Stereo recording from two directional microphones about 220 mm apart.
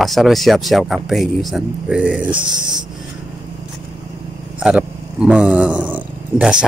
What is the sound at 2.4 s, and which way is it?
Speech, 20° right (ahead or behind).